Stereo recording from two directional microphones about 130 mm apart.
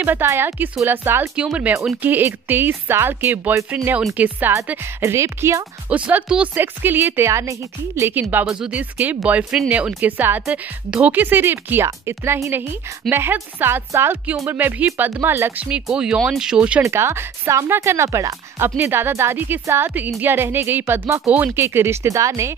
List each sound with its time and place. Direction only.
0.0 s speech: 15° right (ahead or behind)
5.9 s speech: 10° right (ahead or behind)
16.8 s speech: 20° right (ahead or behind)